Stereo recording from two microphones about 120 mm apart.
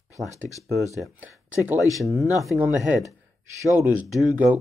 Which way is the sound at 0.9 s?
25° left (ahead or behind).